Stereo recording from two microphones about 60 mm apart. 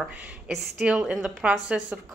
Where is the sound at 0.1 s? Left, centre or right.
Centre.